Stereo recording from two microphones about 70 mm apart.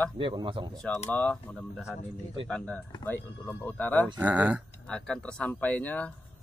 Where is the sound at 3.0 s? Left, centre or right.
Left.